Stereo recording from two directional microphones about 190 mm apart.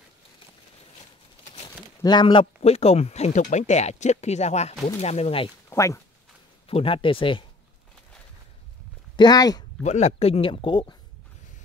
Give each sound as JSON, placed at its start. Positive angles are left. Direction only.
{"t": 2.0, "sound": "speech", "side_deg": 25}
{"t": 5.7, "sound": "speech", "side_deg": 15}
{"t": 6.7, "sound": "speech", "side_deg": 30}
{"t": 9.1, "sound": "speech", "side_deg": 20}
{"t": 9.8, "sound": "speech", "side_deg": 35}